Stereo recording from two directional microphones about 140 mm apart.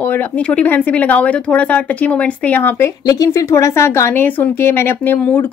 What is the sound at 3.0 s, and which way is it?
Speech, 25° left (ahead or behind).